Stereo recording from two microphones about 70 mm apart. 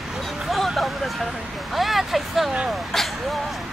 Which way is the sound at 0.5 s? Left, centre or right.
Centre.